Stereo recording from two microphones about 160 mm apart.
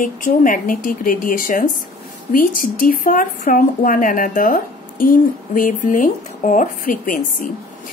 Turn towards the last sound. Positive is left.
turn(degrees=55)  # may be behind; listen again after turning